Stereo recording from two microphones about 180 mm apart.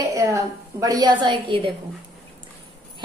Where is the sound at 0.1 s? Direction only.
15° right (ahead or behind).